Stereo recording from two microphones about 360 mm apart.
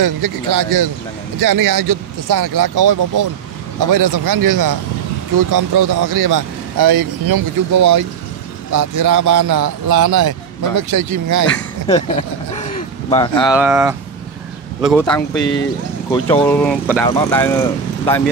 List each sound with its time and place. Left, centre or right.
0.0 s speech: right
9.6 s a man's voice: right
10.2 s speech: right
11.4 s a sound: centre
13.3 s speech: centre
16.1 s speech: centre